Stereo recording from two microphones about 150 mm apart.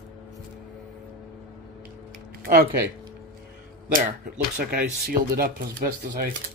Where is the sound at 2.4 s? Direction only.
90° right.